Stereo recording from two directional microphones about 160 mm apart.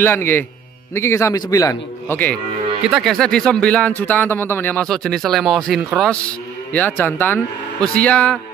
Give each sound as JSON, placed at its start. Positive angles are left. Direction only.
{"t": 0.0, "sound": "speech", "side_deg": 15}
{"t": 2.9, "sound": "speech", "side_deg": 0}
{"t": 7.0, "sound": "speech", "side_deg": 15}